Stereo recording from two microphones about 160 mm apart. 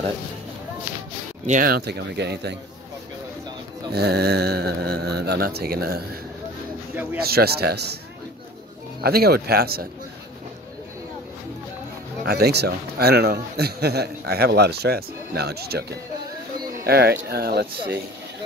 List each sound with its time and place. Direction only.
1.4 s speech: 55° right (ahead or behind); by 2.5 s 90° right
3.9 s speech: 90° right
7.2 s a man's voice: 75° right (ahead or behind); by 8.0 s 90° right
9.0 s speech: 75° right (ahead or behind)
12.3 s a man's voice: 85° right
16.8 s a man's voice: 80° right